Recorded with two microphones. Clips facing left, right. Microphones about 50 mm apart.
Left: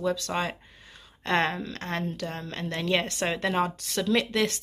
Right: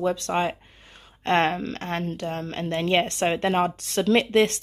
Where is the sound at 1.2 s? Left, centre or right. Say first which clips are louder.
Right 4 dB; right.